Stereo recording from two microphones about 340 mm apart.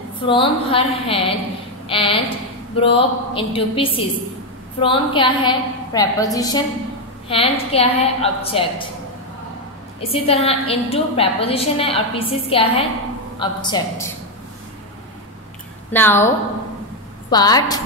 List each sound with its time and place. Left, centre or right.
0.2 s a woman's voice: centre
9.9 s a woman's voice: centre
15.9 s a woman's voice: centre
17.3 s a woman's voice: centre